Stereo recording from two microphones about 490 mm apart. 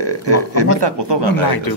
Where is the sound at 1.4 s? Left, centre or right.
Left.